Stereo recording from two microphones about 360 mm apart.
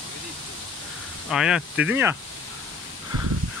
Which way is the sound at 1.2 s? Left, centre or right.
Centre.